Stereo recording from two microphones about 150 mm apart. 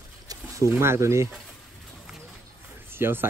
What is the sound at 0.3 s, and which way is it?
Speech, 20° right (ahead or behind).